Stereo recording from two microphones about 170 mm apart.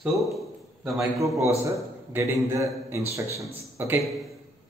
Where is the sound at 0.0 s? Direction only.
Centre (ahead or behind).